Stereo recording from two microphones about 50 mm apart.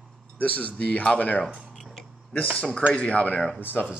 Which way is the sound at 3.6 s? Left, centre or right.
Left.